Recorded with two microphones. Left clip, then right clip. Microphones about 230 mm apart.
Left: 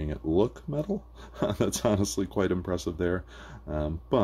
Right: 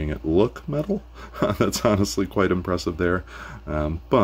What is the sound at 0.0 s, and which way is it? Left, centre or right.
Speech, centre.